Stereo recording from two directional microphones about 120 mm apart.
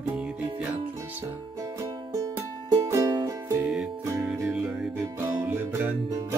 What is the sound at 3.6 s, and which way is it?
Music, 5° right (ahead or behind).